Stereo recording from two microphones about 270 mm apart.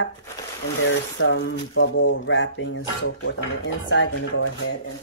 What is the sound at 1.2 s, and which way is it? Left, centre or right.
Speech, left.